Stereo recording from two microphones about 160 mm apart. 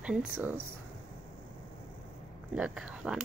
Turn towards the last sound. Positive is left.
turn(degrees=-5)  # may be behind; listen again after turning